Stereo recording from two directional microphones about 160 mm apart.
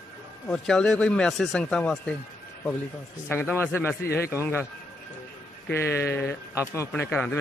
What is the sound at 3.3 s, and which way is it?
A man's voice, 10° left (ahead or behind).